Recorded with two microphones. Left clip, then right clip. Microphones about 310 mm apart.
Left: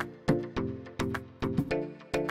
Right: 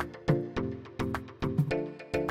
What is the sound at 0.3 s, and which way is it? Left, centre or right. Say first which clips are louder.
Music: left 1 dB; centre.